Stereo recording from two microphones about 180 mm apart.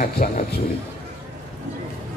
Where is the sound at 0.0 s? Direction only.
55° left (ahead or behind).